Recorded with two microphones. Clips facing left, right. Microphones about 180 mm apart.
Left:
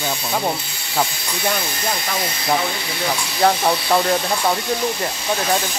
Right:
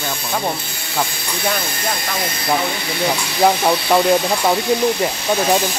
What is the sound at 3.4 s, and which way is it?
Speech, 10° right (ahead or behind).